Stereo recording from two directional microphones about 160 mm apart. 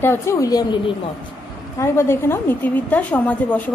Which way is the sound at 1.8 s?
15° left (ahead or behind).